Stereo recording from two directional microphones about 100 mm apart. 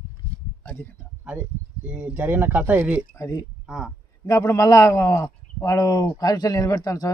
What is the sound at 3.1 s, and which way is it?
Speech, 35° left (ahead or behind).